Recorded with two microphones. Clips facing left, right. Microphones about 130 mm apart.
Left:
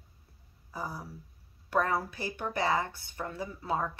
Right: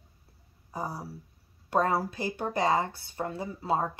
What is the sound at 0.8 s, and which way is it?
Speech, 35° right (ahead or behind).